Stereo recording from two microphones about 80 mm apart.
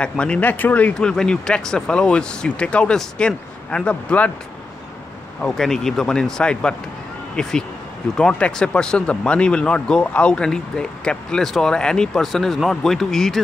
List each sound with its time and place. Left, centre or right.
0.2 s speech: centre
0.9 s speech: centre
5.4 s speech: centre